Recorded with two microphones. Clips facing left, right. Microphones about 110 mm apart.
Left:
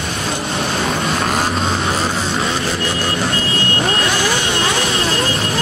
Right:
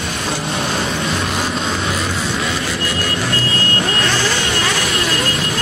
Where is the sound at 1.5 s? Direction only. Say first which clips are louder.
Left 2 dB; 30° left (ahead or behind).